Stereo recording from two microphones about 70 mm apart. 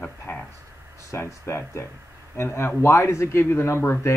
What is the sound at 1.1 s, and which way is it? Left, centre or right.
Speech, left.